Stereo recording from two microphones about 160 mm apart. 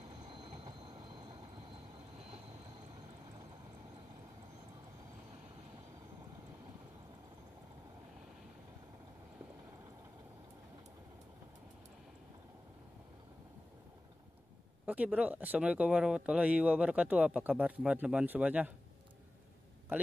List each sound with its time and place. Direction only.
0.3 s train: 30° right (ahead or behind)
14.9 s speech: 10° right (ahead or behind)